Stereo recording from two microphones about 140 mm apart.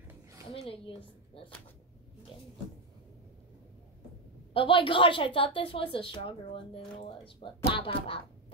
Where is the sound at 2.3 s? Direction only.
35° left (ahead or behind).